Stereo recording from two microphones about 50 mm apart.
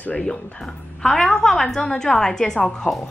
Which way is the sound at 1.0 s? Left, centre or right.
Centre.